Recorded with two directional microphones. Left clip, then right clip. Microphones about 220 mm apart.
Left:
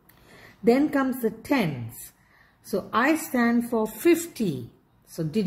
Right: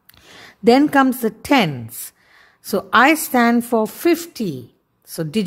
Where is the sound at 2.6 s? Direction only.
40° right (ahead or behind).